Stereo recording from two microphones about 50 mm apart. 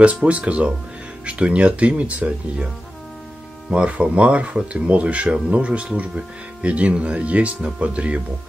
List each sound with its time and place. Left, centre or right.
0.0 s speech: right
3.7 s speech: right